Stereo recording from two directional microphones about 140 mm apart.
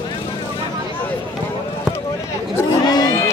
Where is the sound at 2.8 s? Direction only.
30° left (ahead or behind).